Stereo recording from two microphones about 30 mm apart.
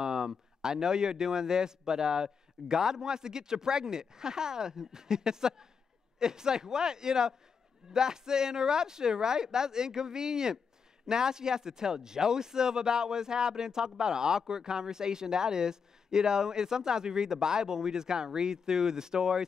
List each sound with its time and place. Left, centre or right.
0.0 s speech: right